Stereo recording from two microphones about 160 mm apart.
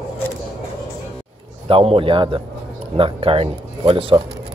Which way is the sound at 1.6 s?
35° right (ahead or behind).